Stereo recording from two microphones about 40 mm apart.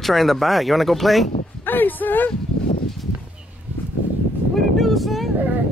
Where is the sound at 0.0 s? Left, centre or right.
Centre.